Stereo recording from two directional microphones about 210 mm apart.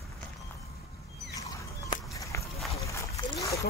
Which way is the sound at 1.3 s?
15° left (ahead or behind).